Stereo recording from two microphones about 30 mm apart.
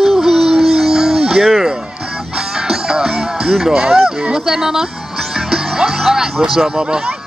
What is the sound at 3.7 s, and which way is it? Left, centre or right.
Speech, centre.